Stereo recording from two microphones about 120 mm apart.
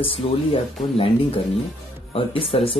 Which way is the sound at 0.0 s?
50° left (ahead or behind).